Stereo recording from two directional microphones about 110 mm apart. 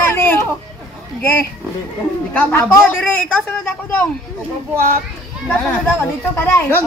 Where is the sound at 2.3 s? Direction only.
15° left (ahead or behind).